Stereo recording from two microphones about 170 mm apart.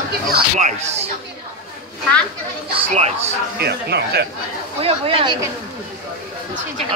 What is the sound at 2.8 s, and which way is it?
Speech, 40° right (ahead or behind).